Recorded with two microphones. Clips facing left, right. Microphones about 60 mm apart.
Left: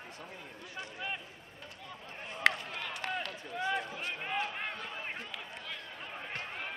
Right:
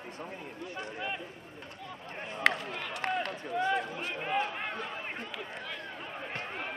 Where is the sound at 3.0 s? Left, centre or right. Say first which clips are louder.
Right 6 dB; right.